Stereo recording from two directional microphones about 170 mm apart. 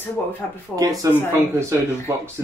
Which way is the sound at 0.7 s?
20° right (ahead or behind).